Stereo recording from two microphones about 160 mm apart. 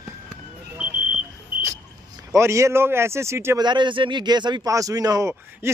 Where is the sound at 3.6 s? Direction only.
30° right (ahead or behind).